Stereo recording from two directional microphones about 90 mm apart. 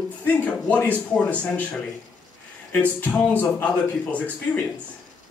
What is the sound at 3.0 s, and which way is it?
Speech, 15° left (ahead or behind).